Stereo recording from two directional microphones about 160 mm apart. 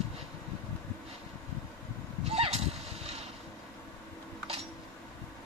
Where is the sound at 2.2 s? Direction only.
40° right (ahead or behind).